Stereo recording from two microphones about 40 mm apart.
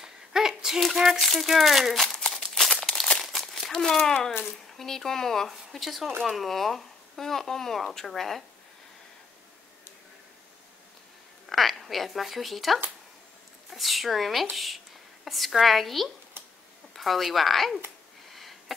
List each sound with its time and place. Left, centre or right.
0.0 s a sound: centre
0.7 s speech: centre
2.2 s crumpling: centre
3.7 s speech: centre
5.5 s speech: centre
11.4 s speech: centre
18.3 s sniff: centre